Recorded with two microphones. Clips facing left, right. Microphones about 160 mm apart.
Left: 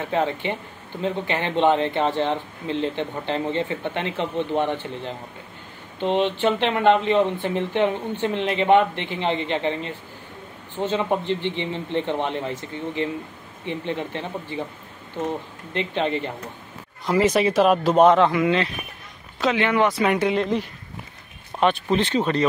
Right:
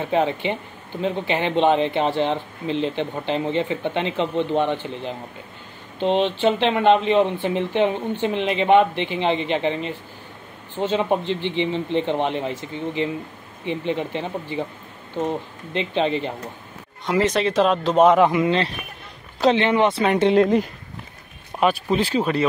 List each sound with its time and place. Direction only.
0.1 s speech: 20° right (ahead or behind)
15.7 s speech: 20° right (ahead or behind)
17.0 s speech: 5° left (ahead or behind)
18.2 s speech: 20° right (ahead or behind)
20.3 s speech: 45° right (ahead or behind)
21.5 s speech: 5° right (ahead or behind)